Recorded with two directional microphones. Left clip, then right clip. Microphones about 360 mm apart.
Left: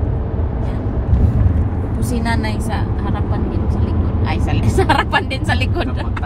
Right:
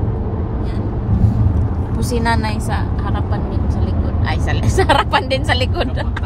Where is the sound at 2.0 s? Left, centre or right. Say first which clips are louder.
Right 4 dB; right.